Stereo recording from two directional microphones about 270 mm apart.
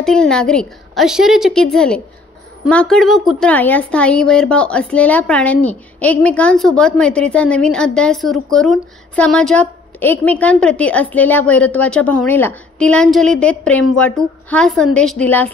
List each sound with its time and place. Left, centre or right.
0.0 s a woman's voice: centre